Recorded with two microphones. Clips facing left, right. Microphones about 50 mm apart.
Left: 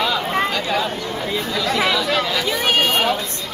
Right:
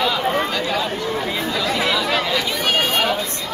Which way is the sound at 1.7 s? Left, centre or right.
Centre.